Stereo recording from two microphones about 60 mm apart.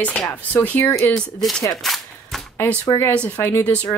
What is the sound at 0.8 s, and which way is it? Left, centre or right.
Speech, left.